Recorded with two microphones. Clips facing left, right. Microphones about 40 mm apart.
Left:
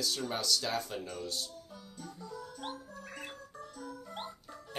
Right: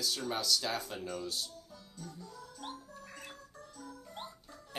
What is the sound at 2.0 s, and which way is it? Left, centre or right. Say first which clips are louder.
Music: left 3 dB; left.